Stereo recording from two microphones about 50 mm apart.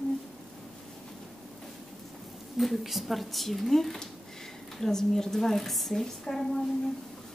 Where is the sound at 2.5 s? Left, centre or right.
Centre.